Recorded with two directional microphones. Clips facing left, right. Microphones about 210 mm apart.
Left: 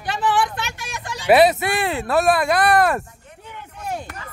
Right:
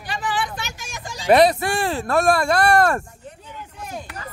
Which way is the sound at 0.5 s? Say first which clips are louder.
Left 3 dB; 60° left (ahead or behind).